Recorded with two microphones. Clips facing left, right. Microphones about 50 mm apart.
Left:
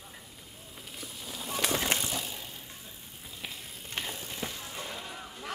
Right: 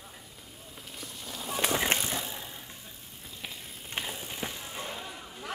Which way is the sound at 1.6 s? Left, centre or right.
Right.